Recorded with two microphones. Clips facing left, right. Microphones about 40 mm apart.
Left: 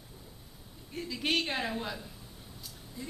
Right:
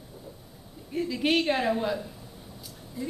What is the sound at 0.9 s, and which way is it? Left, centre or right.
A woman's voice, centre.